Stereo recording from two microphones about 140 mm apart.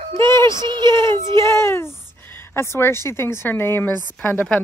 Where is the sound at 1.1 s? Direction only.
20° left (ahead or behind).